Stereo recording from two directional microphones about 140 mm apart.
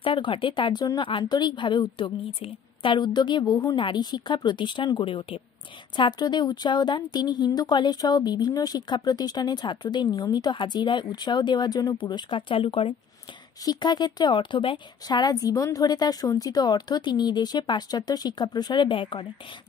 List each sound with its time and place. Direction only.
0.0 s a woman's voice: 40° left (ahead or behind)
13.7 s a woman's voice: 30° left (ahead or behind)